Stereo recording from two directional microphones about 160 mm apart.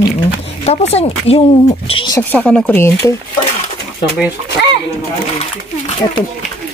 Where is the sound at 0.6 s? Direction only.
40° left (ahead or behind).